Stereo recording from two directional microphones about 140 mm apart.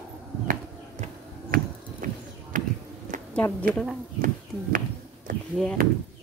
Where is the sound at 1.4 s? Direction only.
80° right.